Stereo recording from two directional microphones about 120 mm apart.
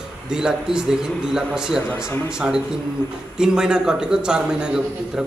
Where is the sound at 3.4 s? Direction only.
5° right (ahead or behind).